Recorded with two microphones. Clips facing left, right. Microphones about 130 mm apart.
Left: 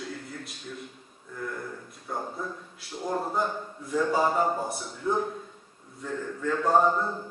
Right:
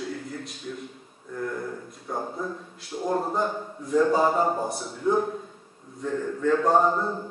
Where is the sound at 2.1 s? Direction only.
Centre (ahead or behind).